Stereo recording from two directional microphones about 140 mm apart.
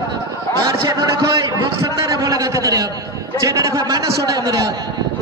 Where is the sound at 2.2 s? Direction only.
25° right (ahead or behind).